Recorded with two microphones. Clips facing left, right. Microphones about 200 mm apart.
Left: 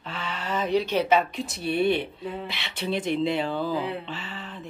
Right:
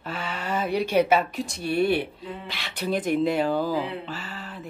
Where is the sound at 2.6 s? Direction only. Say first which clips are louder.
Right 3 dB; 45° right (ahead or behind).